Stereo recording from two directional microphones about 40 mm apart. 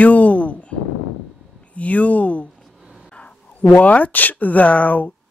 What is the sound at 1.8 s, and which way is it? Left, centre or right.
Speech, left.